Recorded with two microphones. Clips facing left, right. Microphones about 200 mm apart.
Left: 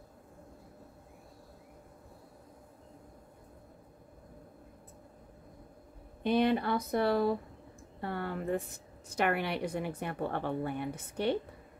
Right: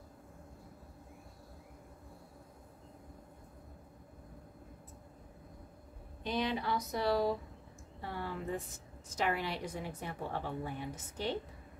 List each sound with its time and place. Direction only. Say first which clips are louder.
6.2 s a woman's voice: left 7 dB; 55° left (ahead or behind)